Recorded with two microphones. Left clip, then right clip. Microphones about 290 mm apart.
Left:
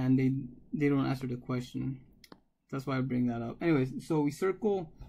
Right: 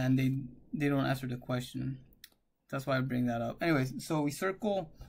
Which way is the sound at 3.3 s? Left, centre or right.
Centre.